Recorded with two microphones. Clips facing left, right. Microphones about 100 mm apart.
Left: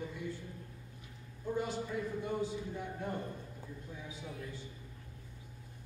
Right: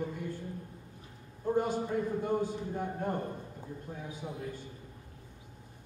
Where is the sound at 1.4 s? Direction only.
50° right (ahead or behind).